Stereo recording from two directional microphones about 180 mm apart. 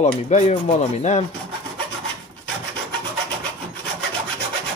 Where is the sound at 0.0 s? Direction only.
40° left (ahead or behind).